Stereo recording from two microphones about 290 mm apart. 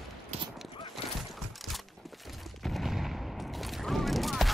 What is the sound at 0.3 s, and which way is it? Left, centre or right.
Clip-clop, right.